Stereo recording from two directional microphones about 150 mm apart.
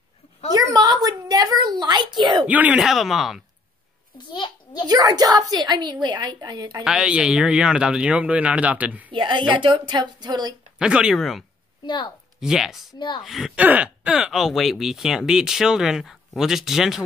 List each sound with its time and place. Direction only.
0.6 s a sound: 25° right (ahead or behind)
2.4 s speech: 10° right (ahead or behind)
4.3 s a sound: 30° left (ahead or behind)
4.8 s a woman's voice: 25° right (ahead or behind)
6.8 s speech: 5° right (ahead or behind)
9.1 s speech: 35° right (ahead or behind)
10.8 s speech: 5° right (ahead or behind)
11.8 s a woman's voice: 30° left (ahead or behind)
12.4 s speech: 5° right (ahead or behind)